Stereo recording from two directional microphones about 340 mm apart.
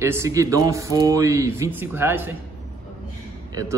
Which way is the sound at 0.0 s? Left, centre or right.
Centre.